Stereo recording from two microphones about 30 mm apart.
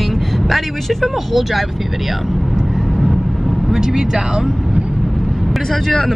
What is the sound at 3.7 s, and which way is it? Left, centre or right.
Music, centre.